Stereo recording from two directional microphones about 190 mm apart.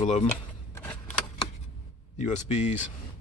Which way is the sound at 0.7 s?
5° left (ahead or behind).